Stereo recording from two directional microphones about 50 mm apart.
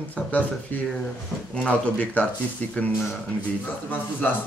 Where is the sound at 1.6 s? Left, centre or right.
Left.